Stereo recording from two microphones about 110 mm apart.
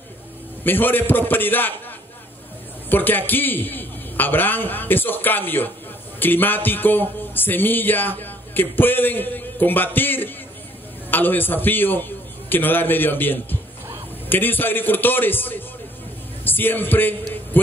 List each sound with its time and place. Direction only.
0.7 s a man's voice: 20° left (ahead or behind)
2.9 s a man's voice: 15° left (ahead or behind)